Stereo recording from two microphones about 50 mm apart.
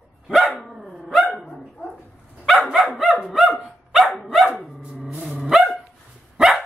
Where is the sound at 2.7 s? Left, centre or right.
Centre.